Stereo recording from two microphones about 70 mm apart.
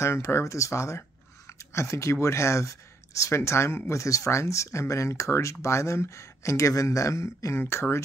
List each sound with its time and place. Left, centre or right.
0.0 s speech: left